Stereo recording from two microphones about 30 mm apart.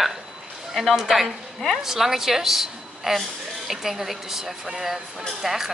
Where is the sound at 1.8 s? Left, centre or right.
Centre.